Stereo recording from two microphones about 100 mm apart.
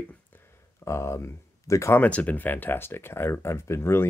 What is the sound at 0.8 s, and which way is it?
Speech, 30° left (ahead or behind).